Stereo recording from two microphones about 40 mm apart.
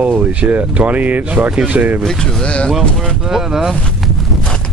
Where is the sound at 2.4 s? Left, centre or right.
Left.